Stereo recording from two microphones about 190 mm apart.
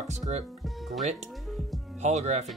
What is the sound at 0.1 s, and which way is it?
Speech, 35° right (ahead or behind).